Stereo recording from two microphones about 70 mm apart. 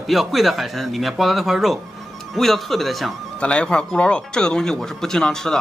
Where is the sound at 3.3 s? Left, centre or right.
Centre.